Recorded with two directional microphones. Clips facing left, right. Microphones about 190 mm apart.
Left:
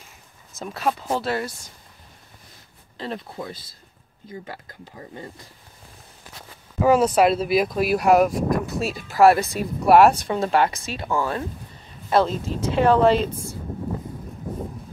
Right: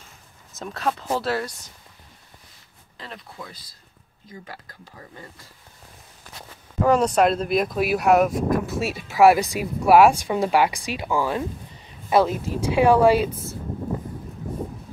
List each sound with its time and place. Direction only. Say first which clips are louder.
0.6 s speech: left 1 dB; 5° left (ahead or behind)
3.0 s speech: left 8 dB; 30° left (ahead or behind)
6.8 s speech: left 1 dB; 5° left (ahead or behind); by 9.7 s 15° right (ahead or behind)
9.8 s speech: even; centre (ahead or behind)